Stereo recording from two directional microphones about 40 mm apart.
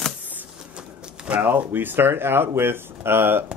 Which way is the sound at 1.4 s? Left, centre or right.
Right.